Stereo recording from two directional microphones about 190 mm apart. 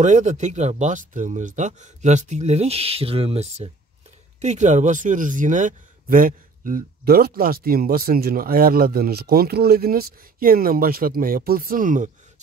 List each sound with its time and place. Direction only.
0.0 s a man's voice: 40° right (ahead or behind)